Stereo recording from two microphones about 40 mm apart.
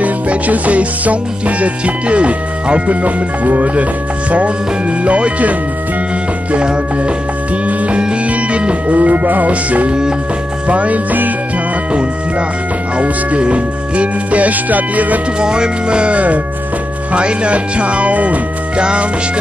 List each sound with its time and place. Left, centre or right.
0.0 s music: right
1.6 s speech: right
5.0 s speech: right
6.5 s speech: right
7.6 s music: right
9.5 s speech: right
12.9 s speech: right
15.4 s speech: right